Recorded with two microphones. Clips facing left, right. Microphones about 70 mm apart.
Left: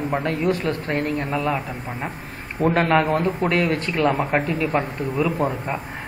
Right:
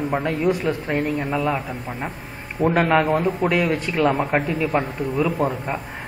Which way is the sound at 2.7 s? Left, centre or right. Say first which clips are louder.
Right 1 dB; centre.